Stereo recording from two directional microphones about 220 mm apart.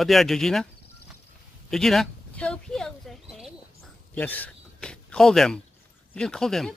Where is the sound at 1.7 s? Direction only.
Centre (ahead or behind).